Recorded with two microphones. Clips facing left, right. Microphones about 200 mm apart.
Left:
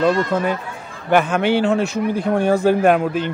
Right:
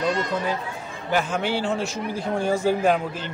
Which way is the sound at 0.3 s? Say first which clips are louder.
Left 5 dB; 60° left (ahead or behind).